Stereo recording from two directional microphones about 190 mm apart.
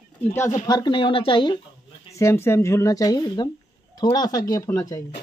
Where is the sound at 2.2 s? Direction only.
15° left (ahead or behind).